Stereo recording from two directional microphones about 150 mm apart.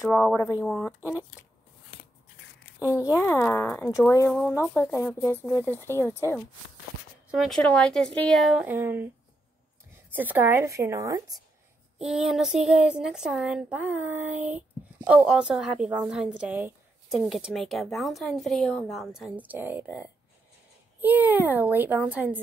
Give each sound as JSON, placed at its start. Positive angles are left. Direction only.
{"t": 0.1, "sound": "a woman's voice", "side_deg": 5}
{"t": 2.9, "sound": "speech", "side_deg": 20}
{"t": 4.3, "sound": "speech", "side_deg": 5}
{"t": 7.2, "sound": "a woman's voice", "side_deg": 0}
{"t": 8.6, "sound": "speech", "side_deg": -15}
{"t": 10.1, "sound": "a woman's voice", "side_deg": -10}
{"t": 12.0, "sound": "speech", "side_deg": 0}
{"t": 17.1, "sound": "a woman's voice", "side_deg": 0}